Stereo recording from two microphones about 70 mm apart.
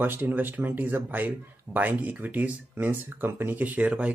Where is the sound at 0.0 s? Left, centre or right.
Right.